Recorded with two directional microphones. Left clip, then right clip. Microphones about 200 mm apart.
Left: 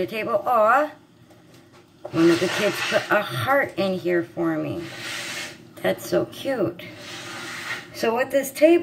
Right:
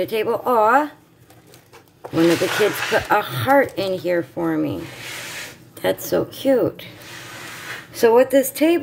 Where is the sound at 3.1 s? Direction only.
55° right (ahead or behind).